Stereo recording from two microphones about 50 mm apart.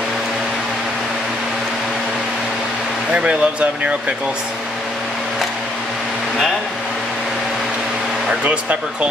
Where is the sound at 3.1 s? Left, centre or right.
Right.